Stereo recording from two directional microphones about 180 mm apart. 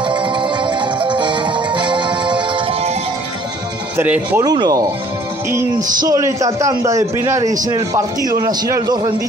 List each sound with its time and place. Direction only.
0.0 s music: 25° right (ahead or behind)
3.9 s a man's voice: 10° right (ahead or behind)
4.5 s a man's voice: 20° right (ahead or behind)
5.9 s a man's voice: 20° right (ahead or behind)